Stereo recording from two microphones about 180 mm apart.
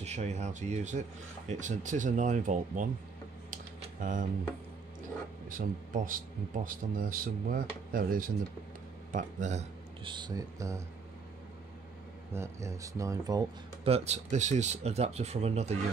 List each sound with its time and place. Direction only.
0.0 s speech: 40° right (ahead or behind)
3.8 s a sound: 45° right (ahead or behind)
5.5 s speech: 50° right (ahead or behind)
10.0 s speech: 25° right (ahead or behind)
12.3 s speech: 15° right (ahead or behind)
13.8 s speech: 35° right (ahead or behind)